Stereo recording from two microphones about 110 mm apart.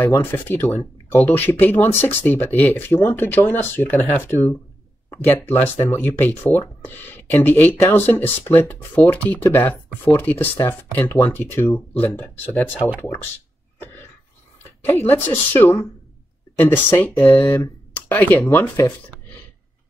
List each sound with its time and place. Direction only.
0.0 s speech: 15° left (ahead or behind)
14.9 s speech: 20° left (ahead or behind)